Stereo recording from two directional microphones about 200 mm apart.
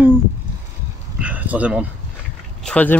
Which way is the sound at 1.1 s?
5° right (ahead or behind).